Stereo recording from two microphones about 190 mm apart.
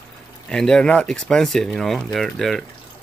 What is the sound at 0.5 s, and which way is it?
Speech, 5° left (ahead or behind).